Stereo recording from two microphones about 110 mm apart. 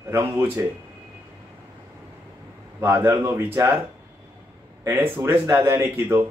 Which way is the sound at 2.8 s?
20° right (ahead or behind).